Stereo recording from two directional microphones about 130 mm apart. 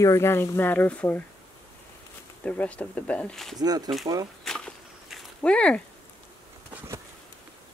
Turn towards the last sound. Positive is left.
turn(degrees=-20)  # may be behind; listen again after turning